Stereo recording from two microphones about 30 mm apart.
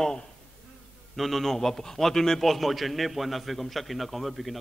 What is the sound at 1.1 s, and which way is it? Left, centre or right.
A man's voice, centre.